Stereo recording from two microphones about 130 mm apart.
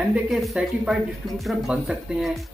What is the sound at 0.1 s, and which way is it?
Speech, 5° right (ahead or behind).